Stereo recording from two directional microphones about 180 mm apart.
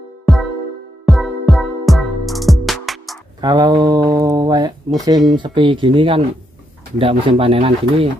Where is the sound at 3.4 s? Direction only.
25° right (ahead or behind).